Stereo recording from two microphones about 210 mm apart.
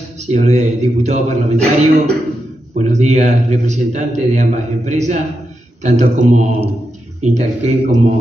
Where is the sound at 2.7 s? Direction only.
35° right (ahead or behind).